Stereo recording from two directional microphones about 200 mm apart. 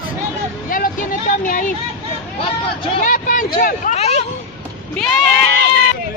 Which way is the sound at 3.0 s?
40° left (ahead or behind).